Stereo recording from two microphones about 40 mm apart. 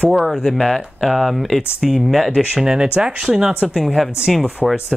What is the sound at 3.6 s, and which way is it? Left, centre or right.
Speech, centre.